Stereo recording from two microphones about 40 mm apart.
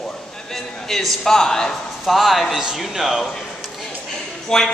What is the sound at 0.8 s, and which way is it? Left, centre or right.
Speech, centre.